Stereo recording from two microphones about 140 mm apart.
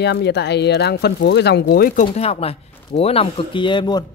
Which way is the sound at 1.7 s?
90° left.